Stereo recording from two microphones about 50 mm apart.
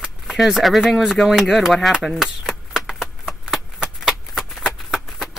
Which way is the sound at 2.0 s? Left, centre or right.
Centre.